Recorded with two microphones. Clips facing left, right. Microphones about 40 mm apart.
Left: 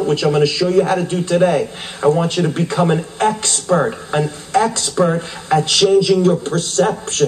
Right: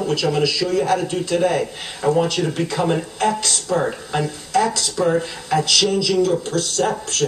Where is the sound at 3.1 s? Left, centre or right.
Left.